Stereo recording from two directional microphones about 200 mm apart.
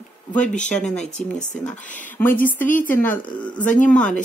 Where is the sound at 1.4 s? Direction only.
35° left (ahead or behind).